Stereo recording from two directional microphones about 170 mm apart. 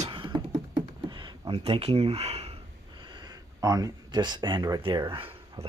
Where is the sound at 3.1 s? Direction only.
25° right (ahead or behind).